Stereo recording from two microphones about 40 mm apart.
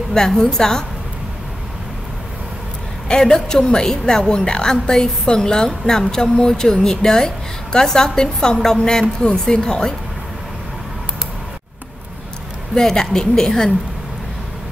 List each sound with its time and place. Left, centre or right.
0.4 s a woman's voice: centre
3.2 s a woman's voice: centre
12.7 s a woman's voice: centre